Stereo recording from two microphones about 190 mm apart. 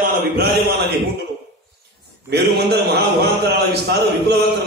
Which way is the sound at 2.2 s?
60° right (ahead or behind).